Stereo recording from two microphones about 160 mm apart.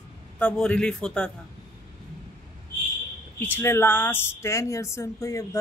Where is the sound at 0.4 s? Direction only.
5° left (ahead or behind).